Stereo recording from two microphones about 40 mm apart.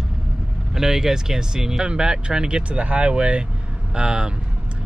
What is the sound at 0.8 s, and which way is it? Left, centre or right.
Speech, centre.